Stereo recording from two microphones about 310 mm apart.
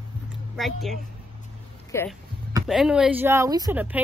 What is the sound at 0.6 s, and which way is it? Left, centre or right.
Speech, centre.